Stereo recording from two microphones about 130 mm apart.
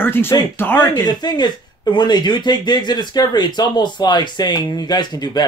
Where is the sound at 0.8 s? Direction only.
35° left (ahead or behind).